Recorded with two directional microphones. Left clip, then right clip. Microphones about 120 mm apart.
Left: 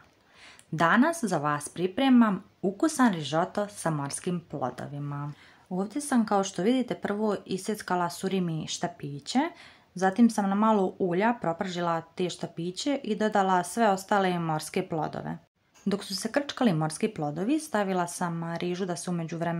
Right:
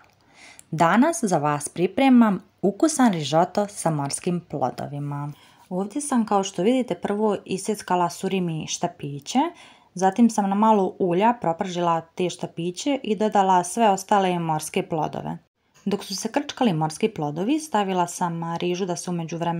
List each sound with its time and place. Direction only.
0.7 s speech: 45° right (ahead or behind)
5.0 s speech: 30° right (ahead or behind)
5.7 s speech: 15° right (ahead or behind)
15.9 s speech: 15° right (ahead or behind)